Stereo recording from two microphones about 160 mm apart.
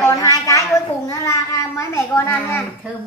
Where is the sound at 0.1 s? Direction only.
20° left (ahead or behind).